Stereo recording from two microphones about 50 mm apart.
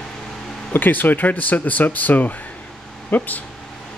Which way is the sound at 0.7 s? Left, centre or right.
Left.